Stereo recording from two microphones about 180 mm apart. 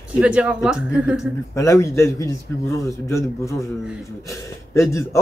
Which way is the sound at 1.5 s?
15° left (ahead or behind).